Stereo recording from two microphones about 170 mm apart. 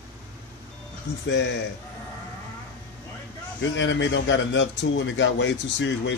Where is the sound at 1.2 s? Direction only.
90° left.